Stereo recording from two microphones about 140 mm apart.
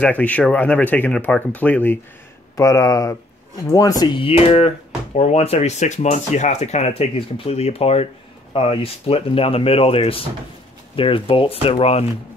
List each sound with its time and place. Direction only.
0.0 s speech: 10° left (ahead or behind); by 12.1 s 45° left (ahead or behind)